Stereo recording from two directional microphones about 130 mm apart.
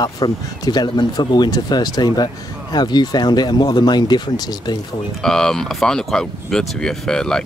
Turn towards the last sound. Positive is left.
turn(degrees=5)  # may be behind; listen again after turning